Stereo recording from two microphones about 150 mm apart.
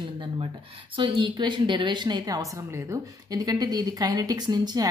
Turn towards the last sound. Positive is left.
turn(degrees=-25)  # may be behind; listen again after turning